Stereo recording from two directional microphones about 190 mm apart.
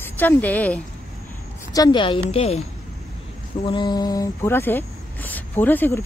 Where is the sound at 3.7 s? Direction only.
25° left (ahead or behind).